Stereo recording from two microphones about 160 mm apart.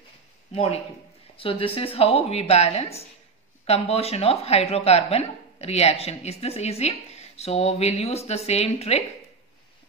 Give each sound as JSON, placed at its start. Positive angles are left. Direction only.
{"t": 1.3, "sound": "a woman's voice", "side_deg": 35}